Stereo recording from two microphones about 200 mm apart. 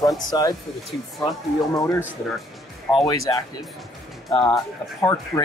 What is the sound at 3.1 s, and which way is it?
Speech, 20° left (ahead or behind).